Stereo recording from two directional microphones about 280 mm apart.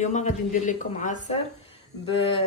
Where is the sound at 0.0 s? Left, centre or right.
Left.